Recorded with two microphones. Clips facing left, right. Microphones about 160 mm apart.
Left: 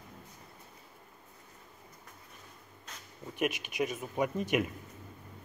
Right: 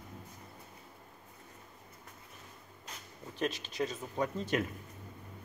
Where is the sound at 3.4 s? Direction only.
15° left (ahead or behind).